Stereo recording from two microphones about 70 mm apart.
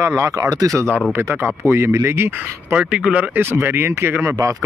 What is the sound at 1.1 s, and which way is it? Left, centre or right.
Speech, right.